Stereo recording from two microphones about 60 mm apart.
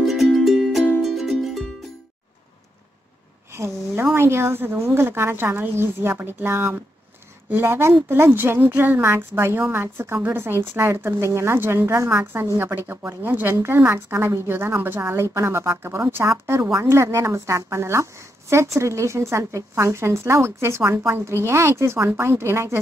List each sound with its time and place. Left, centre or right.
0.0 s music: centre
3.5 s a sound: right
4.1 s a woman's voice: right
12.1 s a woman's voice: right